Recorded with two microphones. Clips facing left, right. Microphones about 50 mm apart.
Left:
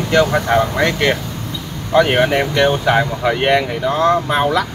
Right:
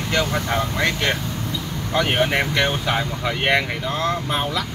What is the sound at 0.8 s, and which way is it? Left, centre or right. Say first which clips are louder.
Speech: left 5 dB; centre.